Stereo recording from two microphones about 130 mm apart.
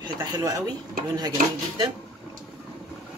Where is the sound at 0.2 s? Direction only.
30° right (ahead or behind).